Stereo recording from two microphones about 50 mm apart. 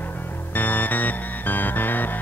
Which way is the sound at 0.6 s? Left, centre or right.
Left.